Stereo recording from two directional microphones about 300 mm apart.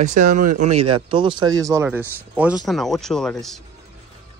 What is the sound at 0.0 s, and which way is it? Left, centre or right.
Speech, right.